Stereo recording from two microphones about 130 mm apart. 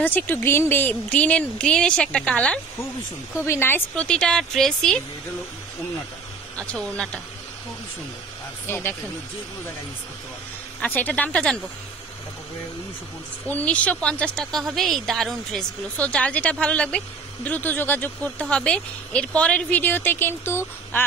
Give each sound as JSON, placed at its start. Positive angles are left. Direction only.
{"t": 0.0, "sound": "a woman's voice", "side_deg": 15}
{"t": 8.6, "sound": "a woman's voice", "side_deg": 15}
{"t": 10.8, "sound": "a woman's voice", "side_deg": 15}
{"t": 13.5, "sound": "a woman's voice", "side_deg": 10}